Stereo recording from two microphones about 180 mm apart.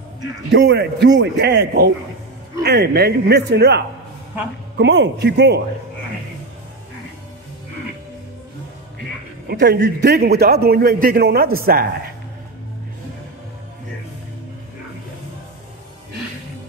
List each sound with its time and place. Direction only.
0.5 s a man's voice: 75° right (ahead or behind)
9.5 s a man's voice: 70° right (ahead or behind)